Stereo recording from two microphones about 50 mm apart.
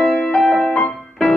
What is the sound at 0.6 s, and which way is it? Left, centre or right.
Music, centre.